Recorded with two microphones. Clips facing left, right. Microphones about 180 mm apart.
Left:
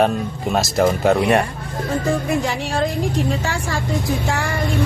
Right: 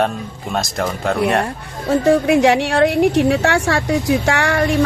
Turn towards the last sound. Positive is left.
turn(degrees=-80)